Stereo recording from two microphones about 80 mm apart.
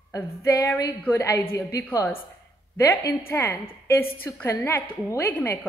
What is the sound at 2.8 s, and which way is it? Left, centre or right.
Speech, left.